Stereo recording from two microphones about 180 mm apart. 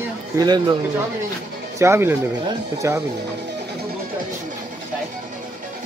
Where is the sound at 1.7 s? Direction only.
15° right (ahead or behind).